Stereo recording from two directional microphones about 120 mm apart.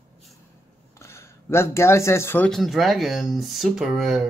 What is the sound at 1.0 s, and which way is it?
Speech, 20° left (ahead or behind).